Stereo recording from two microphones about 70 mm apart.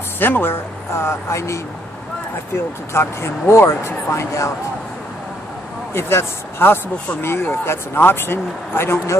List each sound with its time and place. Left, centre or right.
0.2 s speech: left
5.9 s speech: left